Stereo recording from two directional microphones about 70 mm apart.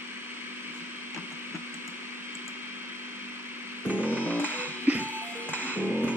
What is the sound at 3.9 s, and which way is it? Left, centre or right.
Music, left.